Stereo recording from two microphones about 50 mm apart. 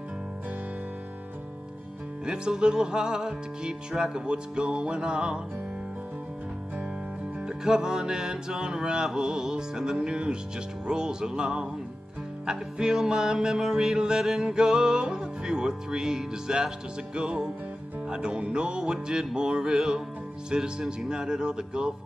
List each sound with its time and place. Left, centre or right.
2.2 s music: centre
7.4 s music: centre